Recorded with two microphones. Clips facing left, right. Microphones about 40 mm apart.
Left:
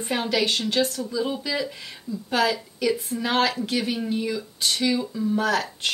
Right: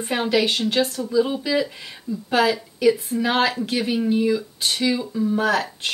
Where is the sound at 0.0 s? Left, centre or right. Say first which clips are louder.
Right 3 dB; centre.